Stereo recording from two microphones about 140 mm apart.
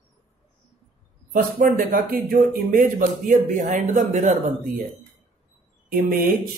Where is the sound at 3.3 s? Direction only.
60° right (ahead or behind).